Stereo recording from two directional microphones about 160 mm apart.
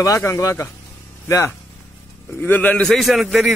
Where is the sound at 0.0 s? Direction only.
20° left (ahead or behind).